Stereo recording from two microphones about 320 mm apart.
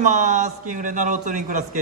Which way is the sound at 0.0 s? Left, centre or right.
Right.